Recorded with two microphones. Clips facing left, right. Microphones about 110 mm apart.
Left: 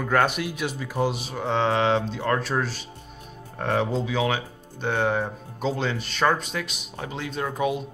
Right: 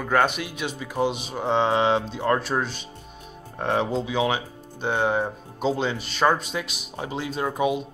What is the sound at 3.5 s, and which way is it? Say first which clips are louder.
Speech: right 1 dB; 10° right (ahead or behind).